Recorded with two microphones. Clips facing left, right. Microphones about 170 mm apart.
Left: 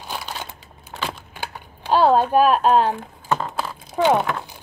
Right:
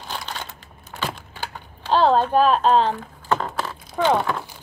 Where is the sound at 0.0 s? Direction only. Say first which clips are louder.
Left 1 dB; 10° left (ahead or behind).